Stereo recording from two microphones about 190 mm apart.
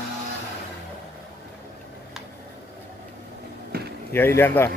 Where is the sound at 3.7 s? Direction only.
50° right (ahead or behind).